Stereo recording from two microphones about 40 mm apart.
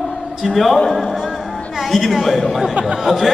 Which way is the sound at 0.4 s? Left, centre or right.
Centre.